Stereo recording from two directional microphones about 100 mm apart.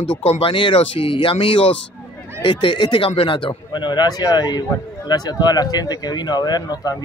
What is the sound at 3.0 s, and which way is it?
Speech, 70° left (ahead or behind).